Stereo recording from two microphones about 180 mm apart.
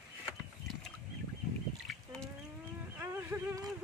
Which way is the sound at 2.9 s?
10° right (ahead or behind).